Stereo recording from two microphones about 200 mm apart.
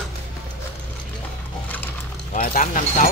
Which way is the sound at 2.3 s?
40° left (ahead or behind).